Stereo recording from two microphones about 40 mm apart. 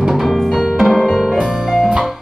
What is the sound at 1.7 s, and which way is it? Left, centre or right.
Music, centre.